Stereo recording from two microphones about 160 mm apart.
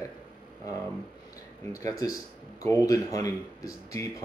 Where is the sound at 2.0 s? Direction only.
20° left (ahead or behind).